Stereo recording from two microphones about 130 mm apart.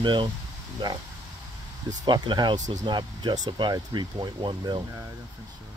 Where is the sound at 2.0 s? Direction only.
35° right (ahead or behind).